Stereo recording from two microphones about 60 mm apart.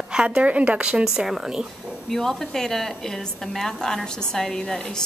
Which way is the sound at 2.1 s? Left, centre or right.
Centre.